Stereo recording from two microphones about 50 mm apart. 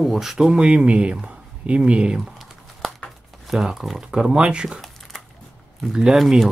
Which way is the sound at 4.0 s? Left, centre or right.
Centre.